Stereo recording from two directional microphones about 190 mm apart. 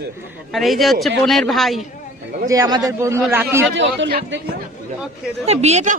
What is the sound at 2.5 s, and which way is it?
A man's voice, 20° right (ahead or behind).